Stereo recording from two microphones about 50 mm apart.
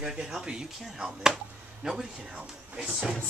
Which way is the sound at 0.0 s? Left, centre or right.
Centre.